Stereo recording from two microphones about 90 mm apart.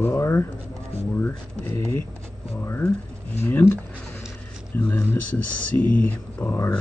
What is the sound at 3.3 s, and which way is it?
Speech, 25° left (ahead or behind).